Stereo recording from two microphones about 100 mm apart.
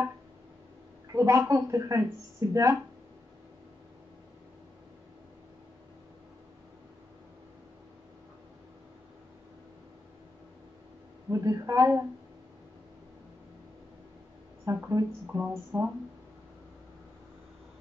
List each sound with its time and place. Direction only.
1.0 s a sound: 30° right (ahead or behind)
1.5 s speech: 30° right (ahead or behind)
11.2 s speech: 35° right (ahead or behind)
14.6 s speech: 30° right (ahead or behind)